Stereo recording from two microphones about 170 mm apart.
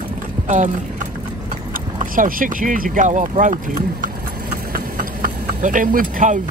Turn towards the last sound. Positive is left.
turn(degrees=-50)  # may be behind; listen again after turning